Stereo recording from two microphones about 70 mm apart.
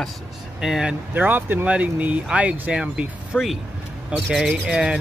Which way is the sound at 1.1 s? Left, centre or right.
Right.